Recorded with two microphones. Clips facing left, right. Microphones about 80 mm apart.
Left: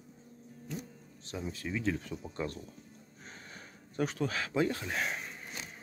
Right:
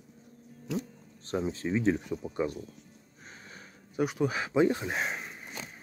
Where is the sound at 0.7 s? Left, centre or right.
Right.